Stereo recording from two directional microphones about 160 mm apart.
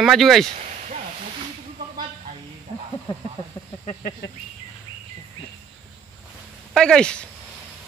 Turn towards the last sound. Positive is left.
turn(degrees=5)  # may be behind; listen again after turning